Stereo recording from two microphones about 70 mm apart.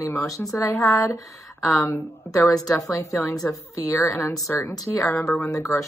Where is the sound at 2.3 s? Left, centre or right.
Left.